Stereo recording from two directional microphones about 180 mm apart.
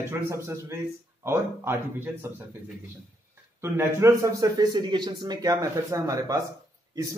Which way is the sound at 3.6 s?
15° right (ahead or behind).